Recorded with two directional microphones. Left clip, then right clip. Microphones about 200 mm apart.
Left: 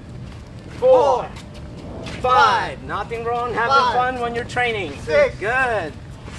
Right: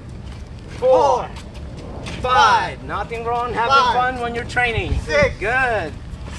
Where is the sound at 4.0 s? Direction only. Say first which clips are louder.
Even; 5° left (ahead or behind).